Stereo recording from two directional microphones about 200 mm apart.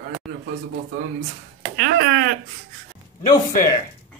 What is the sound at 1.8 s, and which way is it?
Speech, 50° right (ahead or behind).